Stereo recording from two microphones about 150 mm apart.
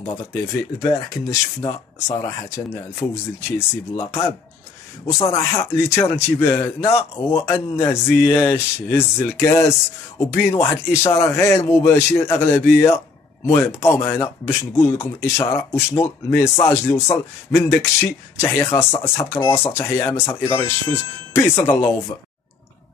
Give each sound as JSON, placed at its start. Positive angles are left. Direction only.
{"t": 0.1, "sound": "speech", "side_deg": 20}
{"t": 5.3, "sound": "a man's voice", "side_deg": 20}